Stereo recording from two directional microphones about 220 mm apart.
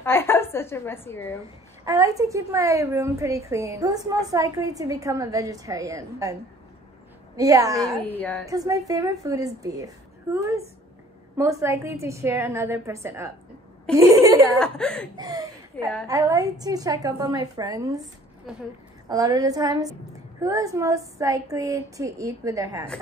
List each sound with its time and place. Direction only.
0.0 s a woman's voice: 10° left (ahead or behind)
1.9 s a woman's voice: 15° right (ahead or behind)
7.3 s a woman's voice: 15° right (ahead or behind)
8.0 s a woman's voice: 5° left (ahead or behind)
8.5 s a woman's voice: 15° right (ahead or behind)
13.9 s speech: 5° left (ahead or behind)
15.1 s a woman's voice: 15° right (ahead or behind)
18.5 s speech: 5° right (ahead or behind)
19.0 s a woman's voice: 15° right (ahead or behind)